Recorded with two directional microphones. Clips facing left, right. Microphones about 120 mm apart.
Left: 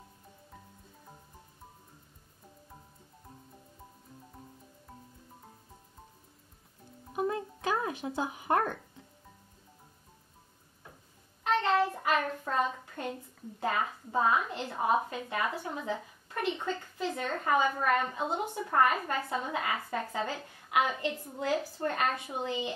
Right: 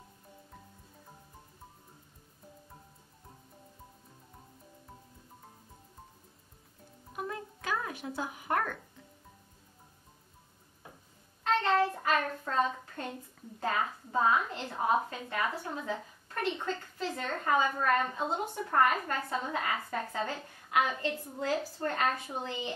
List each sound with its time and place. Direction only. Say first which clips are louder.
7.2 s a sound: left 7 dB; 25° left (ahead or behind)
11.4 s child singing: even; 10° left (ahead or behind)
12.0 s hands: left 1 dB; 10° left (ahead or behind)
13.6 s a woman's voice: left 1 dB; 10° left (ahead or behind)